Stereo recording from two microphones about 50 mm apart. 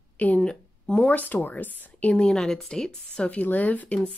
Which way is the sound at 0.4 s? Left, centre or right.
Centre.